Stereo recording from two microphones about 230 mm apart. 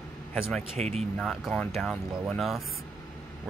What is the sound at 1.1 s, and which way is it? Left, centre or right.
Speech, centre.